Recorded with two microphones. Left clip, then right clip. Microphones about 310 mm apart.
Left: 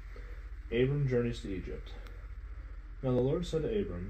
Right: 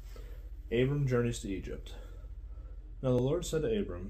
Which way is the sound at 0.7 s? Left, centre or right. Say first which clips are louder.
Even; right.